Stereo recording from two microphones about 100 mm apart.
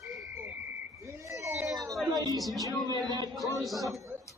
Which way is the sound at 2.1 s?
40° right (ahead or behind).